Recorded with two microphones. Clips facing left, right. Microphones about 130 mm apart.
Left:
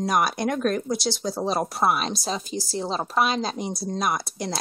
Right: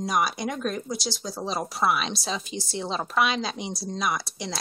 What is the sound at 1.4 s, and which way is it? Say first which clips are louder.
Speech: left 3 dB; 55° left (ahead or behind).